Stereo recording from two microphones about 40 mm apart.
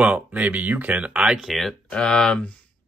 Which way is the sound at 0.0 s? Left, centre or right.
Right.